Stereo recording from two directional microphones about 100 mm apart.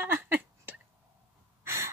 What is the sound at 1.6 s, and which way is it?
Gasp, 30° right (ahead or behind).